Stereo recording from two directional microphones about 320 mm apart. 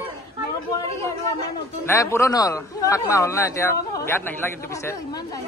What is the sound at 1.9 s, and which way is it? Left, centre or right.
A man's voice, centre.